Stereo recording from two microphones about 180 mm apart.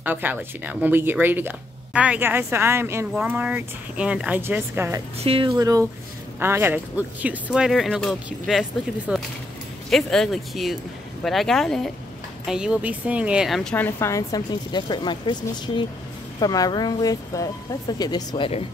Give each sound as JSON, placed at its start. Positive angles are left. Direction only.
{"t": 0.0, "sound": "a woman's voice", "side_deg": -10}
{"t": 5.2, "sound": "speech", "side_deg": -30}
{"t": 5.6, "sound": "a woman's voice", "side_deg": -20}